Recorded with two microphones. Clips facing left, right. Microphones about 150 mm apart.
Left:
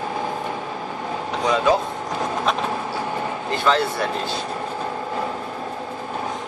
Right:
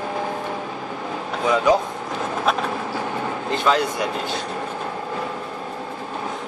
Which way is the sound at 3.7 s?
15° right (ahead or behind).